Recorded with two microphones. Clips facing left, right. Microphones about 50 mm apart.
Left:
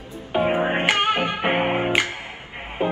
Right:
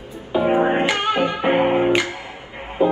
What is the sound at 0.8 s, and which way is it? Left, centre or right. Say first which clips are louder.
Music: right 1 dB; left.